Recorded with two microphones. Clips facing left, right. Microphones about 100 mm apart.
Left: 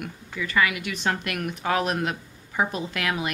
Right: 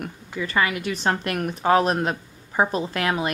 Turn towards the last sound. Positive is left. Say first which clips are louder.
# right 4 dB
turn(degrees=-35)  # may be behind; listen again after turning